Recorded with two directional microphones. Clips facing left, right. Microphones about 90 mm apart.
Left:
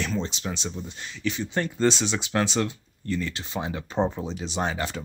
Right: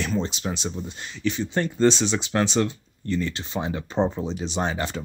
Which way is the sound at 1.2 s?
25° right (ahead or behind).